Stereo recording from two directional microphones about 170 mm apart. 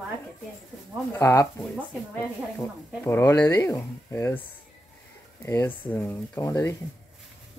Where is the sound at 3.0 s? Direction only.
15° left (ahead or behind).